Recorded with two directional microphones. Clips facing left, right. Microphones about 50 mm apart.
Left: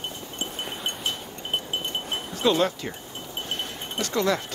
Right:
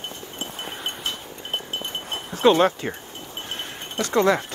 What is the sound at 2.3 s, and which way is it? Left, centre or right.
Speech, right.